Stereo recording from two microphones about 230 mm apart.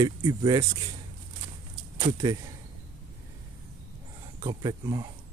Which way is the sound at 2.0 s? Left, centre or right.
Right.